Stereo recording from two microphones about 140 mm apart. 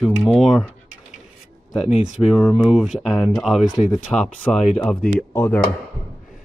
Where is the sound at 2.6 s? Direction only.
5° right (ahead or behind).